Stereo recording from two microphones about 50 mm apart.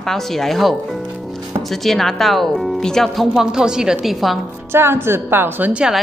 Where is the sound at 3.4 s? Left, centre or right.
Centre.